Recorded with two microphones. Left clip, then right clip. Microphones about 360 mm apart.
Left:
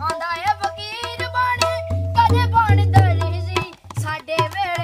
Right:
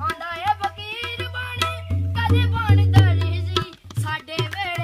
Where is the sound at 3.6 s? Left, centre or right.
Centre.